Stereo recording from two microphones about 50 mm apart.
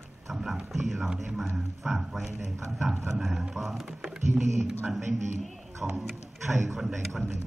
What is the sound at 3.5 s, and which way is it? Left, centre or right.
Speech, centre.